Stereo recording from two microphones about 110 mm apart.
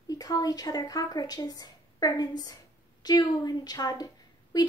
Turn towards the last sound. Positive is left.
turn(degrees=35)  # may be behind; listen again after turning